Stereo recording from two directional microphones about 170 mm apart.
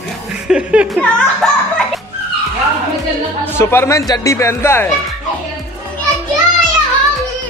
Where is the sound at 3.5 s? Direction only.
15° left (ahead or behind).